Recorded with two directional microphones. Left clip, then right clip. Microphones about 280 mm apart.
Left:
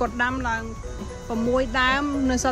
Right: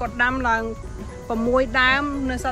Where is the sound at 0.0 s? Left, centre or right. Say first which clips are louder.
Right 3 dB; centre.